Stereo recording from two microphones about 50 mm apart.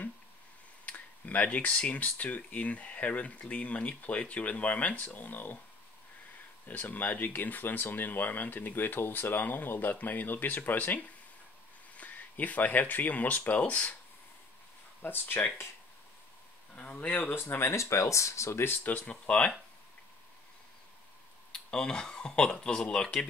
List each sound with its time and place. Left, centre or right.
0.8 s speech: left
6.7 s speech: left
12.0 s speech: left
15.0 s speech: left
16.7 s speech: left
17.3 s speech: left
18.9 s speech: left
19.2 s speech: centre
21.6 s speech: centre